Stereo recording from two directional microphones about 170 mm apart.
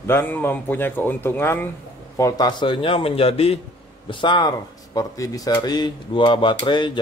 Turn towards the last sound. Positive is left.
turn(degrees=30)  # may be behind; listen again after turning